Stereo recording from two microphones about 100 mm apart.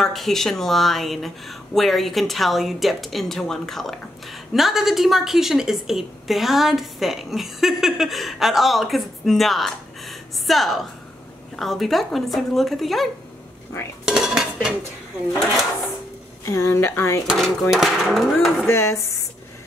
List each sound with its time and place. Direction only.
0.0 s speech: 5° left (ahead or behind)
14.0 s cutlery: 5° right (ahead or behind)
16.4 s speech: 30° left (ahead or behind)
17.4 s speech: 5° right (ahead or behind)
18.7 s speech: 30° left (ahead or behind)